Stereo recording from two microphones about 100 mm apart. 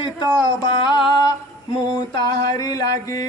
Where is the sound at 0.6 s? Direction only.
45° left (ahead or behind).